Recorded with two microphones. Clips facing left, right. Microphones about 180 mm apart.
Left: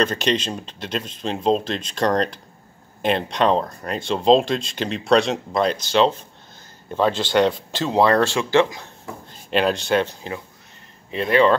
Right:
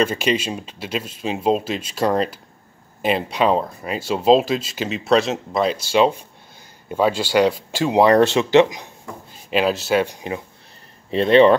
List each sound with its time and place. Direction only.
0.0 s speech: 5° right (ahead or behind)
9.3 s speech: 5° right (ahead or behind)
11.1 s speech: 30° right (ahead or behind)